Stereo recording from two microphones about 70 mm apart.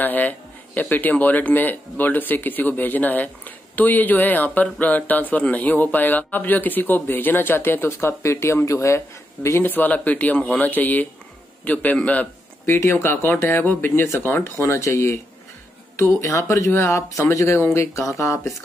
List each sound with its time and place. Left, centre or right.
0.0 s speech: left
9.7 s speech: left